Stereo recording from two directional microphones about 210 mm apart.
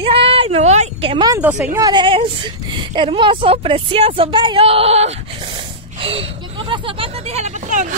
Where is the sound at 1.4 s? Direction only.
10° right (ahead or behind).